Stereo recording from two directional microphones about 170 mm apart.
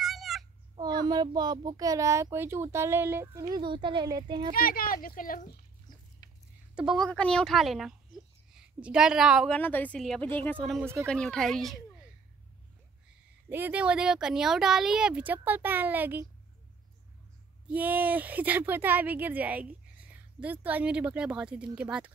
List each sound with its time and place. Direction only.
0.0 s babbling: centre (ahead or behind)
0.7 s a child's voice: 25° right (ahead or behind)
4.6 s speech: 60° left (ahead or behind)
6.2 s a sound: 20° left (ahead or behind)
6.7 s a woman's voice: 5° right (ahead or behind)
7.1 s a woman's voice: 5° left (ahead or behind)
9.5 s a woman's voice: 10° left (ahead or behind)
10.6 s speech: centre (ahead or behind)
13.5 s speech: 10° right (ahead or behind)
17.6 s speech: 10° right (ahead or behind)